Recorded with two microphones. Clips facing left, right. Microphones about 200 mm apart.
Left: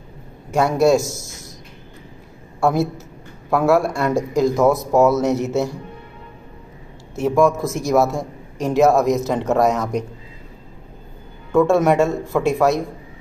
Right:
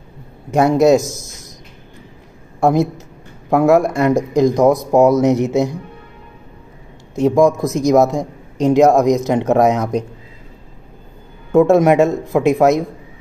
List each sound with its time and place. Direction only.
0.5 s a man's voice: 20° right (ahead or behind)
2.6 s a man's voice: 15° right (ahead or behind)
7.2 s a man's voice: 15° right (ahead or behind)
11.5 s speech: 20° right (ahead or behind)